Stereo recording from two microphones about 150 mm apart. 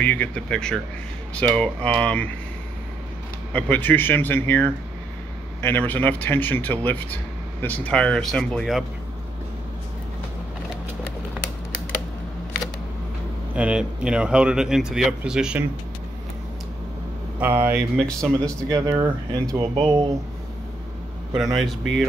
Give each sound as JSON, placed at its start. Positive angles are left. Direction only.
{"t": 0.0, "sound": "speech", "side_deg": 10}
{"t": 3.5, "sound": "speech", "side_deg": 10}
{"t": 13.6, "sound": "speech", "side_deg": -5}
{"t": 17.4, "sound": "speech", "side_deg": -15}
{"t": 17.9, "sound": "speech", "side_deg": 5}
{"t": 18.6, "sound": "speech", "side_deg": -20}
{"t": 21.4, "sound": "speech", "side_deg": 0}